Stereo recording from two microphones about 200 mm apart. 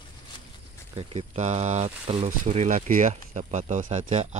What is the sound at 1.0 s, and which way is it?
Speech, 30° right (ahead or behind).